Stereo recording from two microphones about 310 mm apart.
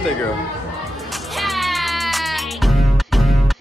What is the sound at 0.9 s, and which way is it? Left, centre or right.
Music, centre.